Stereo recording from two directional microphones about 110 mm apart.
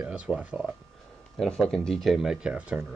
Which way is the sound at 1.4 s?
5° left (ahead or behind).